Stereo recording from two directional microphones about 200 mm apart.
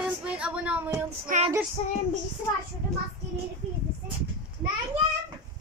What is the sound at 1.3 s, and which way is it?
Female singing, 40° right (ahead or behind).